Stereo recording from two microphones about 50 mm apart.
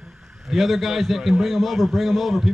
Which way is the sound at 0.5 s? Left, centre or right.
Centre.